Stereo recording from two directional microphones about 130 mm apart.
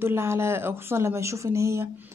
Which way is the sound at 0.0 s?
20° right (ahead or behind).